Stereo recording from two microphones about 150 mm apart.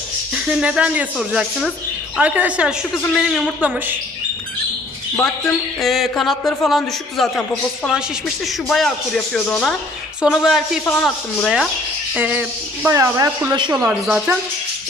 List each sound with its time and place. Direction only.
0.3 s a man's voice: 5° right (ahead or behind)
5.8 s a man's voice: centre (ahead or behind)
12.2 s speech: 10° right (ahead or behind); by 13.8 s 30° right (ahead or behind)
13.8 s a man's voice: 10° right (ahead or behind)